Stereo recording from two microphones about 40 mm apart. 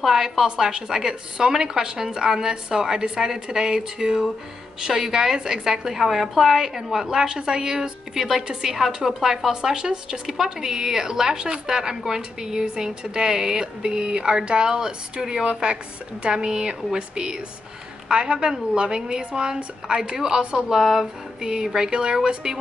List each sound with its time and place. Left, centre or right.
0.0 s a woman's voice: centre
21.4 s speech: centre